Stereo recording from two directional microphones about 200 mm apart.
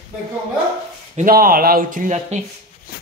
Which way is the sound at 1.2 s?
45° right (ahead or behind).